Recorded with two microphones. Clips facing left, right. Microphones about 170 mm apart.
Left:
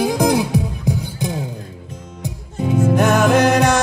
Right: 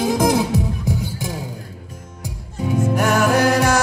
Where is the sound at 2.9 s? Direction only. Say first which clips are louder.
Left 3 dB; 20° left (ahead or behind).